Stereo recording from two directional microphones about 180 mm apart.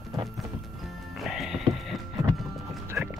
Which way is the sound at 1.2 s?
Centre (ahead or behind).